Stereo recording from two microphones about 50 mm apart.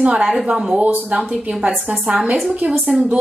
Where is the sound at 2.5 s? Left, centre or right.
Right.